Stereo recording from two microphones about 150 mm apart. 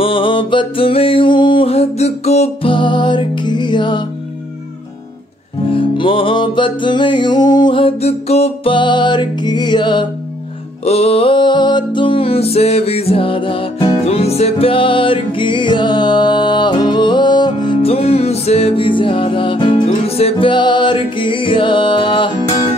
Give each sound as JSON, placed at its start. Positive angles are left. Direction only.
{"t": 0.0, "sound": "music", "side_deg": 35}
{"t": 5.7, "sound": "music", "side_deg": 35}
{"t": 10.8, "sound": "music", "side_deg": 45}